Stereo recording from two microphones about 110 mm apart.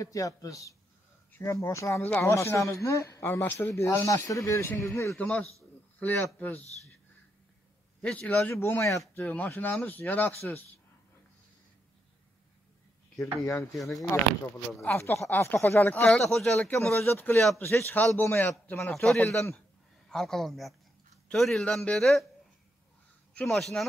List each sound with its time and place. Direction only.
0.0 s a man's voice: 30° left (ahead or behind)
5.2 s a man's voice: 5° left (ahead or behind)
5.9 s speech: 15° left (ahead or behind)
8.0 s speech: 10° left (ahead or behind)
13.4 s speech: 30° left (ahead or behind)
14.9 s speech: 20° left (ahead or behind)
16.8 s speech: 20° left (ahead or behind)
18.8 s a man's voice: 5° left (ahead or behind)
23.3 s a man's voice: 5° left (ahead or behind)